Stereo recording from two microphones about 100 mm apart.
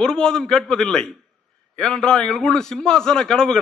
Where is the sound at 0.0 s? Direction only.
5° left (ahead or behind).